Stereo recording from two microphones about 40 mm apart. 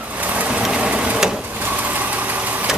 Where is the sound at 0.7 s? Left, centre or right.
Right.